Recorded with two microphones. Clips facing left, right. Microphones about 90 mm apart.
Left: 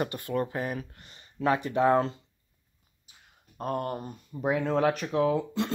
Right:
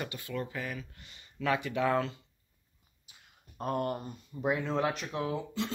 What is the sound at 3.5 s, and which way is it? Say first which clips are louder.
Speech: left 1 dB; 35° left (ahead or behind).